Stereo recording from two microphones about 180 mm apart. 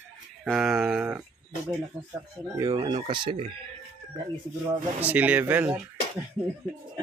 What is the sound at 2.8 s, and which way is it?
Speech, 30° right (ahead or behind).